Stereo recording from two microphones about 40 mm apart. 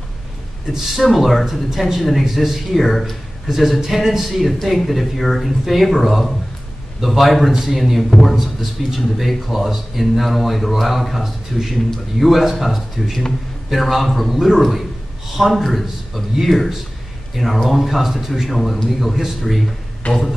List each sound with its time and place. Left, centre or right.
0.7 s a man's voice: centre
1.4 s a man's voice: centre
3.4 s a man's voice: centre
20.1 s speech: left